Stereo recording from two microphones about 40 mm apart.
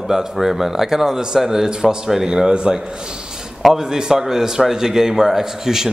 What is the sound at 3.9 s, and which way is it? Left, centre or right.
A man's voice, centre.